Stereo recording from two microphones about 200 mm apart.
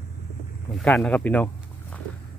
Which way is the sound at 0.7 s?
5° left (ahead or behind).